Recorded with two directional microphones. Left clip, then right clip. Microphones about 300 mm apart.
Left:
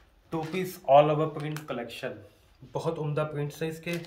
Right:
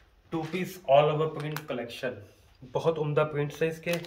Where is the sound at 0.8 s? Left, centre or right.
Centre.